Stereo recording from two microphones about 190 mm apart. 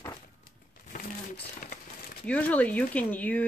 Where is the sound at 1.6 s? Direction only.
45° left (ahead or behind).